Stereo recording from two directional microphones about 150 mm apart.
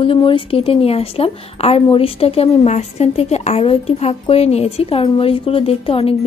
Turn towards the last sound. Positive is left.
turn(degrees=40)  # may be behind; listen again after turning